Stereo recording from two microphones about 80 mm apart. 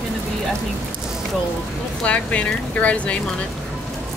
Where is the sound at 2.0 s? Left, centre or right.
Centre.